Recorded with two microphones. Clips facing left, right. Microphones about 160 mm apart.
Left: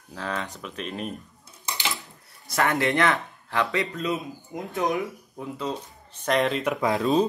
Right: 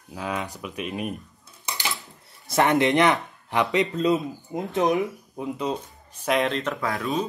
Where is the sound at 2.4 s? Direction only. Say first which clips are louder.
Right 4 dB; 20° right (ahead or behind).